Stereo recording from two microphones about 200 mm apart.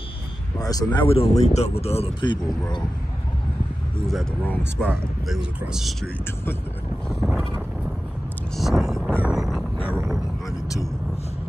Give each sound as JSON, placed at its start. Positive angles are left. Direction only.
{"t": 0.6, "sound": "speech", "side_deg": 20}
{"t": 4.1, "sound": "speech", "side_deg": 0}
{"t": 7.1, "sound": "boat", "side_deg": 0}
{"t": 8.5, "sound": "vehicle", "side_deg": 0}